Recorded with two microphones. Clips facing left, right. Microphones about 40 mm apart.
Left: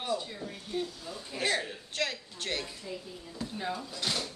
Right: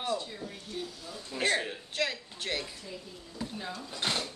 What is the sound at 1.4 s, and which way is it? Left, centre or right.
Speech, right.